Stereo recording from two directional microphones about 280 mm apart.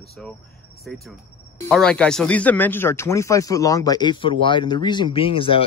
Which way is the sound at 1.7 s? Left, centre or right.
Centre.